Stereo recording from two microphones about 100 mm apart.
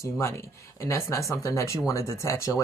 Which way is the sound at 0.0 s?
30° left (ahead or behind).